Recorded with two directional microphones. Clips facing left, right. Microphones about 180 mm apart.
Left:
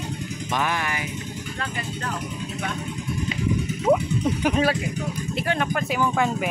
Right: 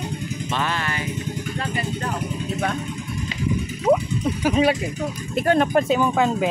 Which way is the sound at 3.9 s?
Centre (ahead or behind).